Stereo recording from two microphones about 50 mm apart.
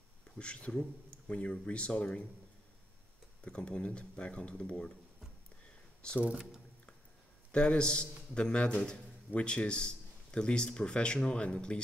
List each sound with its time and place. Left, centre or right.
0.4 s a man's voice: left
3.4 s a man's voice: centre
6.3 s speech: centre
7.5 s a man's voice: left